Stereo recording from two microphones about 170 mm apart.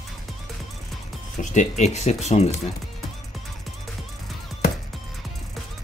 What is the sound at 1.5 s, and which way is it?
Speech, 40° left (ahead or behind).